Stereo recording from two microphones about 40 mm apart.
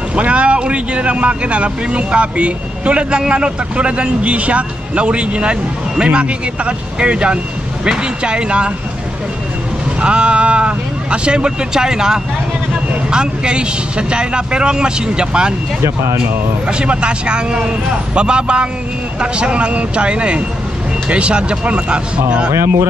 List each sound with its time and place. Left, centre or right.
0.1 s speech: right
9.9 s speech: right
16.6 s speech: right